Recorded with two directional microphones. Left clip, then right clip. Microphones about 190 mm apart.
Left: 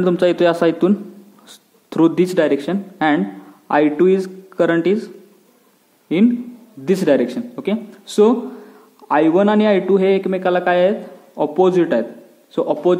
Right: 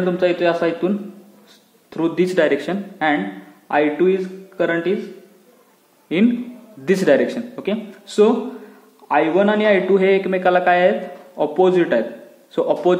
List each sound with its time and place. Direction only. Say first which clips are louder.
0.0 s a man's voice: left 3 dB; 40° left (ahead or behind)
2.2 s a man's voice: even; 25° left (ahead or behind)
6.1 s a man's voice: left 2 dB; 25° left (ahead or behind)